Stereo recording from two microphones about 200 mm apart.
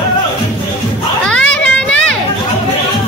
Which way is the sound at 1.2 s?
5° left (ahead or behind).